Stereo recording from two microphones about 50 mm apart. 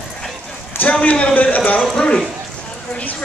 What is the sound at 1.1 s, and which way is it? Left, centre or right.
Speech, left.